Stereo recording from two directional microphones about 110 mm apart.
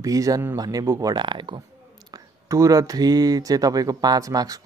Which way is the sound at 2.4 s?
25° right (ahead or behind).